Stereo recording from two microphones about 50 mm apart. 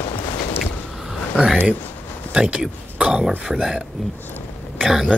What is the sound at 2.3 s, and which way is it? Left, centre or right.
Speech, centre.